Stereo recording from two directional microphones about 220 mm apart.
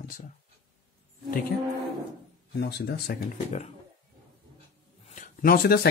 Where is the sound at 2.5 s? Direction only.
50° left (ahead or behind).